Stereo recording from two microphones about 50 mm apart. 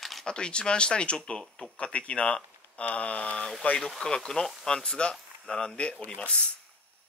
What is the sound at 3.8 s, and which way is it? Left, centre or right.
Speech, centre.